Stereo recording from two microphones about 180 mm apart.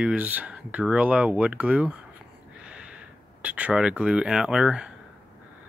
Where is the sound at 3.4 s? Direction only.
10° right (ahead or behind).